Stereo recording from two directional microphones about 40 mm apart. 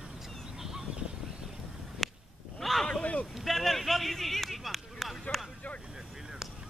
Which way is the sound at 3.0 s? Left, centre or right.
Left.